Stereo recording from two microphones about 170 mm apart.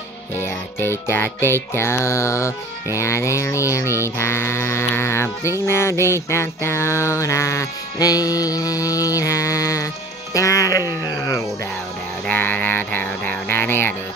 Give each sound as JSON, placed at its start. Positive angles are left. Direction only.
{"t": 0.4, "sound": "mantra", "side_deg": 15}
{"t": 10.3, "sound": "music", "side_deg": 20}
{"t": 12.3, "sound": "a sound", "side_deg": 10}